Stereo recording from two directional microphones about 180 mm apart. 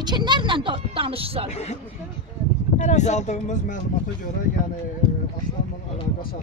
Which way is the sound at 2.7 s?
40° left (ahead or behind).